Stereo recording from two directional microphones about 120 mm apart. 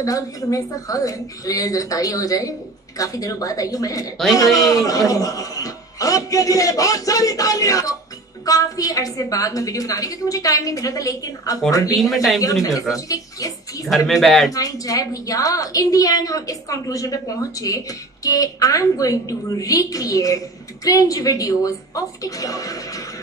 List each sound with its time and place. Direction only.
0.0 s a woman's voice: 30° left (ahead or behind)
12.0 s speech: centre (ahead or behind)
12.9 s a woman's voice: 30° left (ahead or behind)
13.8 s speech: centre (ahead or behind)
14.5 s a woman's voice: 30° left (ahead or behind)